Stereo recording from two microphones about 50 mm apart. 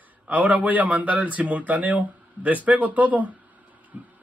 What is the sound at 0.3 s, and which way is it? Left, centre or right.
Speech, right.